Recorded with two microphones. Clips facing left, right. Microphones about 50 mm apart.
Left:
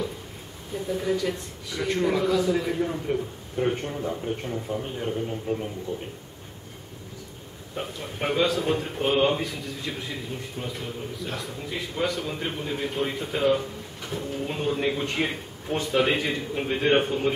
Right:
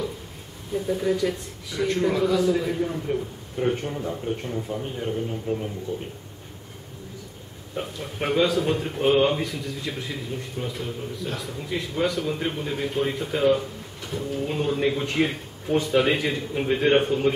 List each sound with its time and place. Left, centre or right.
0.7 s a man's voice: centre
7.7 s a man's voice: centre